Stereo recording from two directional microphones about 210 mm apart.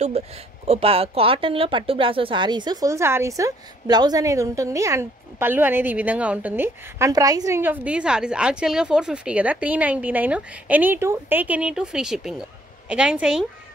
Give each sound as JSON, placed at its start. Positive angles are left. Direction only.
{"t": 0.2, "sound": "speech", "side_deg": -30}